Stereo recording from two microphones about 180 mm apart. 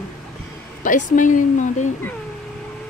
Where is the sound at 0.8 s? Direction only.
45° left (ahead or behind).